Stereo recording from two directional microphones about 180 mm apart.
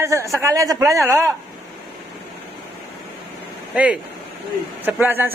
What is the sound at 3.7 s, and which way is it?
Speech, 5° right (ahead or behind).